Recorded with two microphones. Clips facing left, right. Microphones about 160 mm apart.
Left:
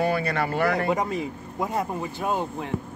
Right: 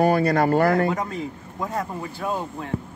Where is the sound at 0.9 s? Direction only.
15° left (ahead or behind).